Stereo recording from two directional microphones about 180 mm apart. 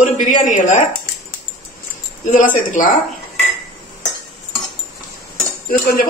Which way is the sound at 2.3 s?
45° left (ahead or behind).